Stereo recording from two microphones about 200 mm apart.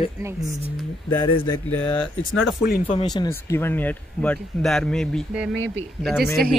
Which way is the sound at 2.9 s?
25° left (ahead or behind).